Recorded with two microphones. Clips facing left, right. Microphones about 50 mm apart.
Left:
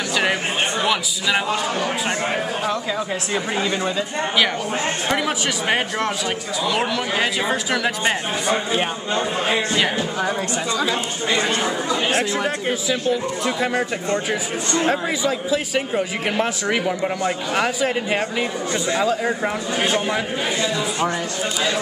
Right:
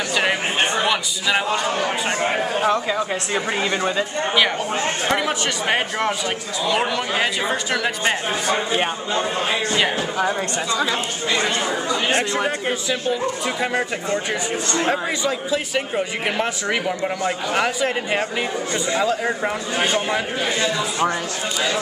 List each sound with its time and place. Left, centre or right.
0.1 s a man's voice: centre
5.0 s speech: centre
9.8 s speech: centre
11.4 s speech: centre